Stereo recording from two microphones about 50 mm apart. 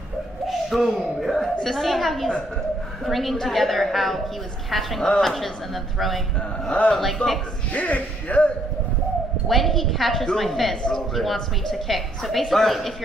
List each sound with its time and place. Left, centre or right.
0.5 s a woman's voice: centre
5.0 s speech: centre
5.9 s a woman's voice: centre
7.7 s speech: left
9.5 s a woman's voice: centre